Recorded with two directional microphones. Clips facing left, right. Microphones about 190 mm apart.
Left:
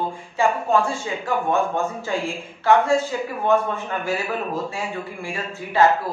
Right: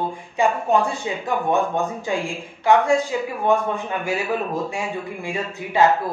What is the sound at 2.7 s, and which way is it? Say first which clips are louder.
Speech: even; 15° right (ahead or behind).